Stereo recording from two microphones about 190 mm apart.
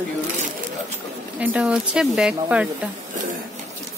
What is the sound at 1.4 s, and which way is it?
Speech, 5° right (ahead or behind).